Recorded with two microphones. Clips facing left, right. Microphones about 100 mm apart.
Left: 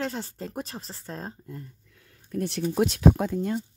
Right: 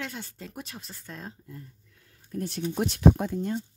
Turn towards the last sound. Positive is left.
turn(degrees=90)